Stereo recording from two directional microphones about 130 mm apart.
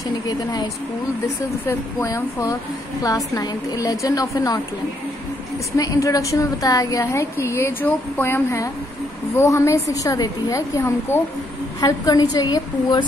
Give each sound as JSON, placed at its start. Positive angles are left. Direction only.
{"t": 0.3, "sound": "a woman's voice", "side_deg": 35}
{"t": 1.7, "sound": "a woman's voice", "side_deg": 20}
{"t": 5.8, "sound": "a woman's voice", "side_deg": 25}